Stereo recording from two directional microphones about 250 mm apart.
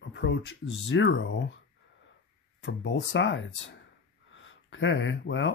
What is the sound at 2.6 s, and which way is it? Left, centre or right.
Speech, left.